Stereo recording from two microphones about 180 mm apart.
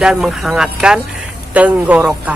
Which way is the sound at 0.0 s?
5° right (ahead or behind).